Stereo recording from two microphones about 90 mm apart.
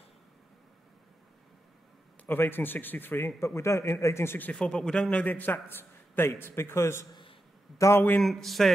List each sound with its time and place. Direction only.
2.2 s a man's voice: 25° left (ahead or behind)
4.5 s a man's voice: 10° left (ahead or behind); by 7.1 s 30° left (ahead or behind)
7.7 s a sound: 35° left (ahead or behind)
8.2 s a man's voice: centre (ahead or behind)